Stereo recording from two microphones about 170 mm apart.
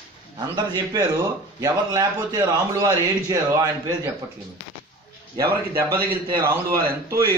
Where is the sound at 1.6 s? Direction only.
20° right (ahead or behind).